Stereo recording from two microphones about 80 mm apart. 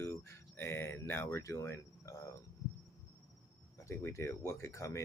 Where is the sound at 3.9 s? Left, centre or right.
Left.